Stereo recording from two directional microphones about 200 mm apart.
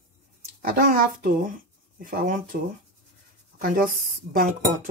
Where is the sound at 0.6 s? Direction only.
45° right (ahead or behind).